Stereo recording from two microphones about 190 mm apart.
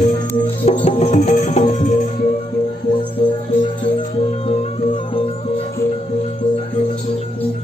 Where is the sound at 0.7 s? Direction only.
35° left (ahead or behind).